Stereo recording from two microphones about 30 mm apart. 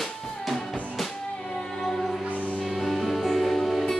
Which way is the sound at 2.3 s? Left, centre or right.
Left.